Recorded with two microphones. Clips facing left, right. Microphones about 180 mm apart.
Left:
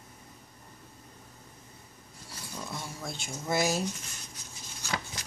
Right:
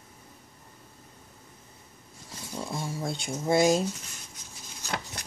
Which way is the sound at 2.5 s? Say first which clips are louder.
Right 6 dB; 30° right (ahead or behind).